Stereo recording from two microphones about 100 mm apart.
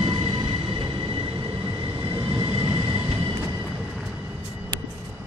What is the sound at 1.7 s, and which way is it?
Train, 40° right (ahead or behind).